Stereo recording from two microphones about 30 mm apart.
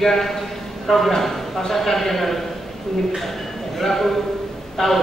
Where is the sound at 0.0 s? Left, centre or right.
Centre.